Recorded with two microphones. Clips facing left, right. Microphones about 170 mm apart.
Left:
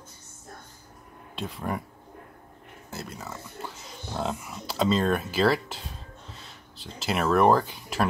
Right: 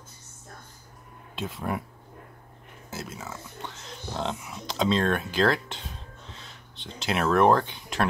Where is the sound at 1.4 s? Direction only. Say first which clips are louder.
Right 1 dB; centre (ahead or behind).